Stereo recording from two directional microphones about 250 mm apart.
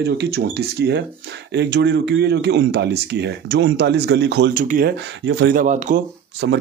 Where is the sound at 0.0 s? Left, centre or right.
Right.